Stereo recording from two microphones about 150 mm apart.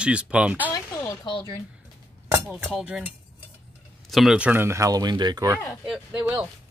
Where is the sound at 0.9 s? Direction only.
30° left (ahead or behind).